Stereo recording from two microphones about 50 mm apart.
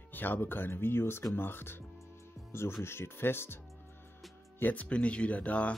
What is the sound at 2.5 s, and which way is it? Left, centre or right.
Speech, left.